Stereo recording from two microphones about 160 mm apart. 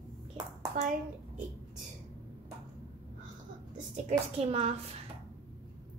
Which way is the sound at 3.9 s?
40° right (ahead or behind).